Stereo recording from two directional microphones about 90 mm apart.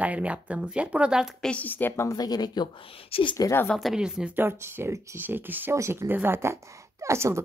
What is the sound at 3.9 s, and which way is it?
Speech, 5° right (ahead or behind).